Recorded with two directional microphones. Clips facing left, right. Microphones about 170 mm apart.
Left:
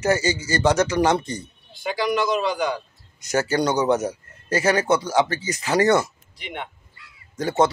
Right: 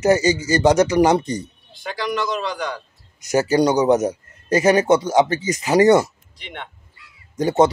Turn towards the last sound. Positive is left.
turn(degrees=-15)  # may be behind; listen again after turning